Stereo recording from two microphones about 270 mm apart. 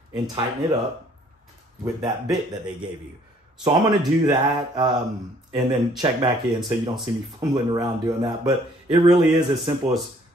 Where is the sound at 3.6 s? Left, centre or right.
Centre.